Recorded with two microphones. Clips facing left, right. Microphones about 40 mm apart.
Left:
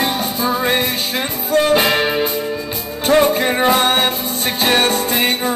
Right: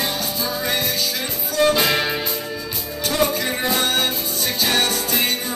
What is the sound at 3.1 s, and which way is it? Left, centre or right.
Music, left.